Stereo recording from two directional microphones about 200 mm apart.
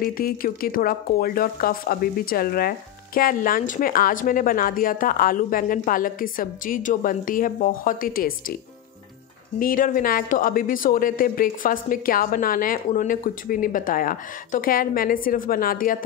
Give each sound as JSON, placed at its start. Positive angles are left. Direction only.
{"t": 0.0, "sound": "speech", "side_deg": 45}
{"t": 9.6, "sound": "speech", "side_deg": 45}